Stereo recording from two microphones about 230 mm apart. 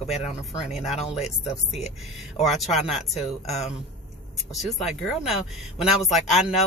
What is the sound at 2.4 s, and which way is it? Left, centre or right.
Speech, centre.